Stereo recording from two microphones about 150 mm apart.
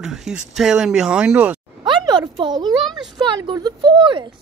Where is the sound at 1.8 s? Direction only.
30° right (ahead or behind).